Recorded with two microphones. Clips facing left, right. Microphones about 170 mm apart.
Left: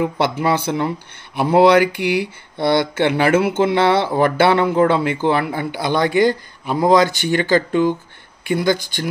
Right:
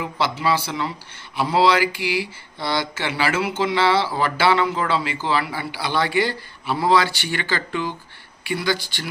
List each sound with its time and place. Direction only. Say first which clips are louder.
0.0 s speech: left 5 dB; 50° left (ahead or behind)
6.8 s speech: left 5 dB; 20° left (ahead or behind)
7.2 s speech: left 10 dB; 45° left (ahead or behind)